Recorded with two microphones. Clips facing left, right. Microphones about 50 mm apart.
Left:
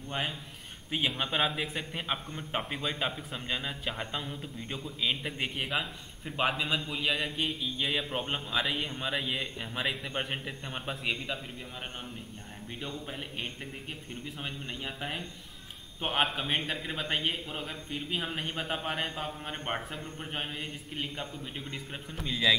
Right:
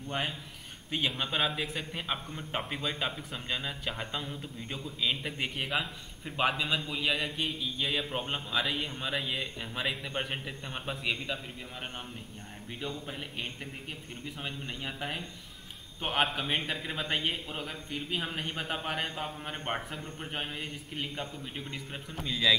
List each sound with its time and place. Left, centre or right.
0.1 s a man's voice: centre
12.8 s a man's voice: centre